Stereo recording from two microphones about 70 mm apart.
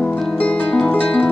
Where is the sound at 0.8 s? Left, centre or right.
Centre.